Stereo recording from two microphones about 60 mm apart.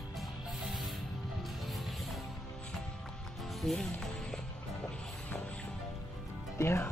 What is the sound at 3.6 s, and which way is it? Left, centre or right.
Speech, centre.